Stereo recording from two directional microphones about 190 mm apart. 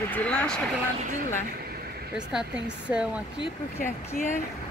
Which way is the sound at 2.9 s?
10° right (ahead or behind).